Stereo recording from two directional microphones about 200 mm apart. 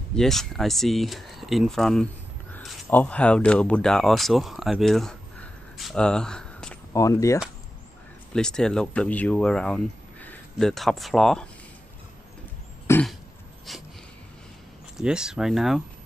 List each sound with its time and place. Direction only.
0.1 s speech: centre (ahead or behind)
6.9 s speech: 15° left (ahead or behind)
8.3 s speech: 5° left (ahead or behind)
12.8 s throat clearing: 10° left (ahead or behind)
13.7 s a sound: centre (ahead or behind)
15.0 s speech: 5° right (ahead or behind)